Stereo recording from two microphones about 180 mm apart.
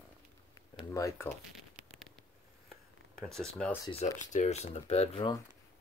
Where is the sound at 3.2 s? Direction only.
5° left (ahead or behind).